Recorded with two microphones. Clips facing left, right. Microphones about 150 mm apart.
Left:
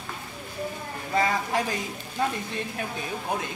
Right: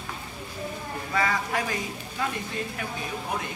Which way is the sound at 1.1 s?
25° left (ahead or behind).